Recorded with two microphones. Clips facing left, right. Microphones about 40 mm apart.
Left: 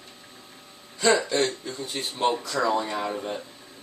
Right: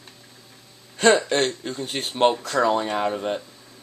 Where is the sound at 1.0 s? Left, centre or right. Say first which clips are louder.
Right 4 dB; right.